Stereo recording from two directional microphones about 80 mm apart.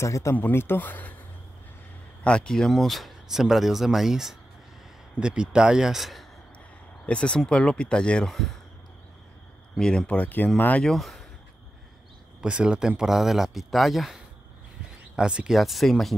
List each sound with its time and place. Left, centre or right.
0.0 s speech: left
0.4 s speech: left
2.2 s speech: centre
7.1 s speech: centre
9.8 s speech: centre
10.8 s speech: centre
12.4 s speech: centre